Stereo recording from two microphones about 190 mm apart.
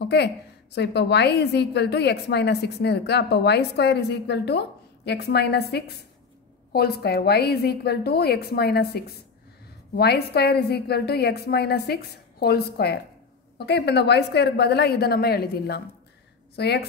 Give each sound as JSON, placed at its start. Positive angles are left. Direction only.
{"t": 0.0, "sound": "a woman's voice", "side_deg": 60}